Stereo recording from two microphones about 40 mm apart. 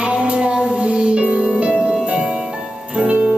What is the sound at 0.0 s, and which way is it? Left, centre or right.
Music, right.